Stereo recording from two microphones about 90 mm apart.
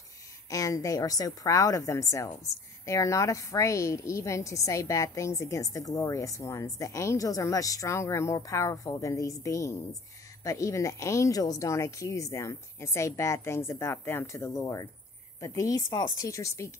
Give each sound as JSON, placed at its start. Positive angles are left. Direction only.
{"t": 0.5, "sound": "a woman's voice", "side_deg": 40}